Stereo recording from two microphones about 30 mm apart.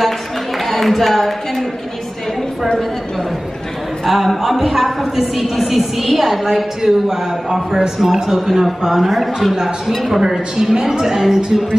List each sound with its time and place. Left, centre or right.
0.7 s a sound: centre
4.0 s a woman's voice: centre
6.4 s a woman's voice: centre
9.6 s a woman's voice: centre